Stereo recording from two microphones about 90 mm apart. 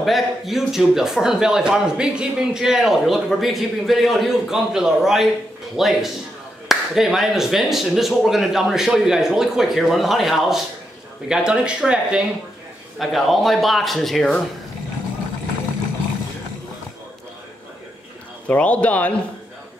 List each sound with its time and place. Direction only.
0.0 s speech: centre (ahead or behind)
13.0 s speech: centre (ahead or behind)
18.5 s speech: 15° left (ahead or behind)